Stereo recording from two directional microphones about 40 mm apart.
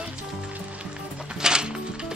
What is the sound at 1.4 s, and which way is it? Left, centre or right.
Music, centre.